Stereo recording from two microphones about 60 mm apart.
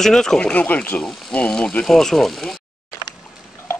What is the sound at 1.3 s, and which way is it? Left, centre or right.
Speech, centre.